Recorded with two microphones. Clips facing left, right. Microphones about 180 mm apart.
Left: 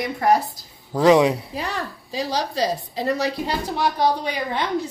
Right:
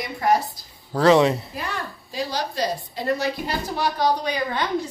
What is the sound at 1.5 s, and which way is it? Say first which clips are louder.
A woman's voice: left 3 dB; 80° left.